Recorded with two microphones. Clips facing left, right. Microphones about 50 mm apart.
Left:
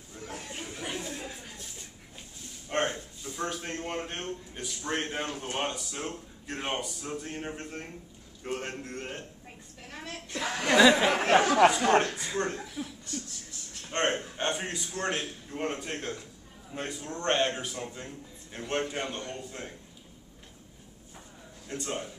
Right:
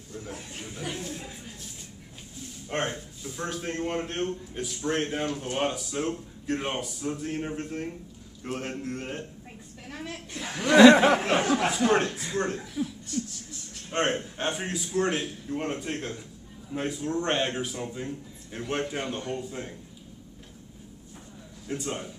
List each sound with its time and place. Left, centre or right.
0.7 s a sound: centre
2.7 s a man's voice: centre
5.7 s a man's voice: centre
9.8 s a sound: centre
10.3 s speech: left
10.9 s speech: right
11.7 s a man's voice: centre
21.6 s a man's voice: centre